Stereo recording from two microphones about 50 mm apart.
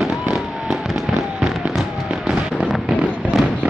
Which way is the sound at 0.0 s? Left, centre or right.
Centre.